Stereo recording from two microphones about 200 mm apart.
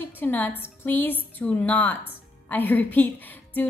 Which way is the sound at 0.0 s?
10° left (ahead or behind).